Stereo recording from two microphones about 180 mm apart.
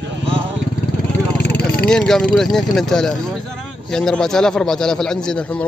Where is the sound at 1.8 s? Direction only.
5° left (ahead or behind).